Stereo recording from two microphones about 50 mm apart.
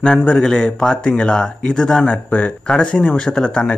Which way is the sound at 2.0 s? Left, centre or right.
Left.